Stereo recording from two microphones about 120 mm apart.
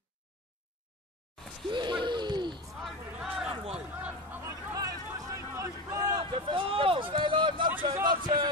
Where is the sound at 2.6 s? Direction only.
Centre (ahead or behind).